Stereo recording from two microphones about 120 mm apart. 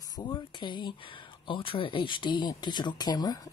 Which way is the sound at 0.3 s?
40° left (ahead or behind).